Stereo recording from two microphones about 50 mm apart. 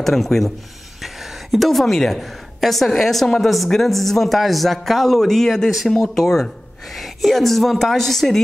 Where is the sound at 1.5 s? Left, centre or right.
Centre.